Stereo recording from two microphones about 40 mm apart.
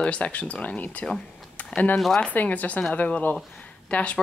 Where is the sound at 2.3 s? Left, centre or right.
Left.